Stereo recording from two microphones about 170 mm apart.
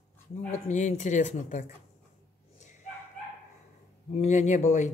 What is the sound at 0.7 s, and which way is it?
Speech, 45° left (ahead or behind).